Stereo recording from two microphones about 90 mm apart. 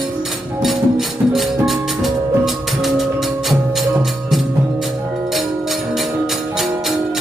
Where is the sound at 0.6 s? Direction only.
Centre (ahead or behind).